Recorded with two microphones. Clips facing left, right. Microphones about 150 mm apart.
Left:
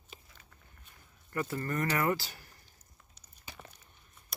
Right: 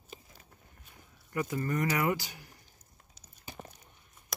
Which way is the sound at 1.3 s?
15° right (ahead or behind).